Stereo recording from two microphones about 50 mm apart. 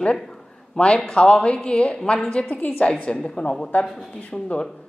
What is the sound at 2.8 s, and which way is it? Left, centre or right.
A man's voice, left.